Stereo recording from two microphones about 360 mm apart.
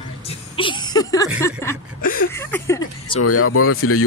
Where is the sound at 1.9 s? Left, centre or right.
Left.